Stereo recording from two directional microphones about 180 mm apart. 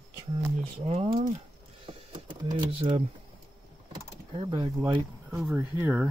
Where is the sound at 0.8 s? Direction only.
35° right (ahead or behind).